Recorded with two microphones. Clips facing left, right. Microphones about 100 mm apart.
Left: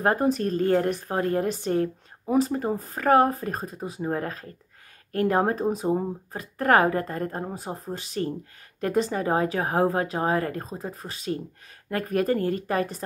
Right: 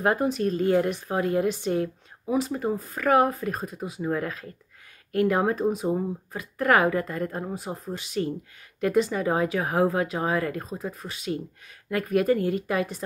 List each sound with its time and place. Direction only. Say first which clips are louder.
0.0 s speech: left 1 dB; 40° left (ahead or behind)